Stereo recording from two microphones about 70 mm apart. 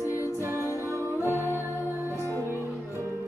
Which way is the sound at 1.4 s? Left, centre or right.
Left.